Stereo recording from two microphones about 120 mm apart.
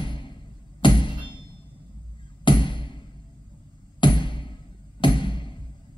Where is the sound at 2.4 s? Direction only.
40° left (ahead or behind).